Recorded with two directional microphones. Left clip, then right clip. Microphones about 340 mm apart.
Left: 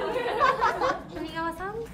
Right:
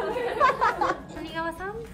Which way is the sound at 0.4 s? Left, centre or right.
Right.